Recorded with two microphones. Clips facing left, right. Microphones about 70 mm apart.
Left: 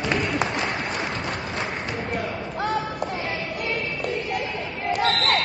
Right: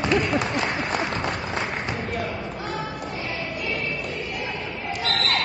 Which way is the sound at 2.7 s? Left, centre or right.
Centre.